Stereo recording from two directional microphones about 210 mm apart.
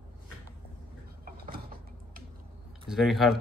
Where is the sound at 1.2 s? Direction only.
45° right (ahead or behind).